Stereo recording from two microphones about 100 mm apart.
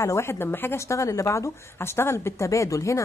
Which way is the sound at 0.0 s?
30° left (ahead or behind).